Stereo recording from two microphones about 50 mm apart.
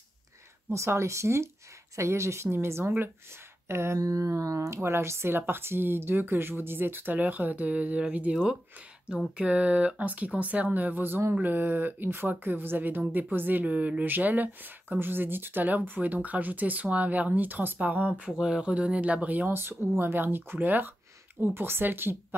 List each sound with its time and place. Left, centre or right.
0.7 s speech: right
9.4 s speech: right
18.4 s speech: centre
19.4 s speech: right
21.4 s speech: right